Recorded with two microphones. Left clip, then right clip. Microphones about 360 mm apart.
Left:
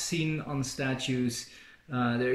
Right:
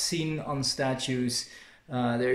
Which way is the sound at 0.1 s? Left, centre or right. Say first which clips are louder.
Right 1 dB; centre.